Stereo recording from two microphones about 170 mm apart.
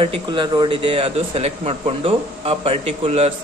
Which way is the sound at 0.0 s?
30° right (ahead or behind).